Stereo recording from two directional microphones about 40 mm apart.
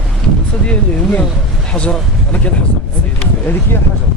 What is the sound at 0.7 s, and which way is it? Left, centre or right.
Speech, left.